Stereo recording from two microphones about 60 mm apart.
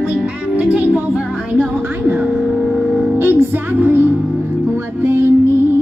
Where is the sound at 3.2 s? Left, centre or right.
Right.